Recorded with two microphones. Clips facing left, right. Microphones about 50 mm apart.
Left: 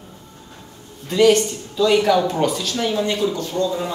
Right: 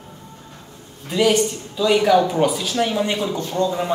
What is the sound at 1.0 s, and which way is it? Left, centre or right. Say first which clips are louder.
Speech: left 3 dB; centre.